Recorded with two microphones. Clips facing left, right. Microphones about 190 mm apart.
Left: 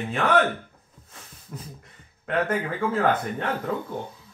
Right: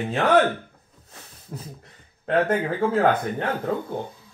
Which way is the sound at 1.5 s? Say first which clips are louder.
Right 2 dB; 30° right (ahead or behind).